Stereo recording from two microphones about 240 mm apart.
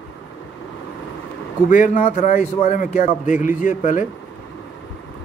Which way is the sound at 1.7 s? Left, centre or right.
Left.